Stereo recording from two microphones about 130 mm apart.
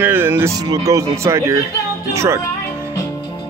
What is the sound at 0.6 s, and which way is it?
Speech, 30° right (ahead or behind).